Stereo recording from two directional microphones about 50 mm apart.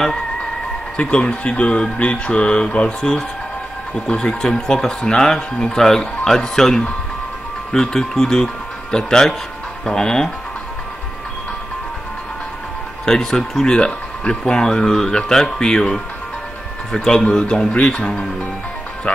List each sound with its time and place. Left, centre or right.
0.9 s speech: left
13.0 s speech: centre